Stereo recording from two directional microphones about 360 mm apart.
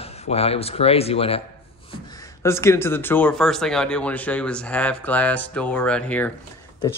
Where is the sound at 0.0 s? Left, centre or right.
Centre.